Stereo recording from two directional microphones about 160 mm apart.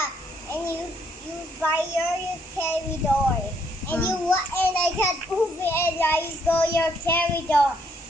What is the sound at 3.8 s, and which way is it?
A child's voice, 10° left (ahead or behind).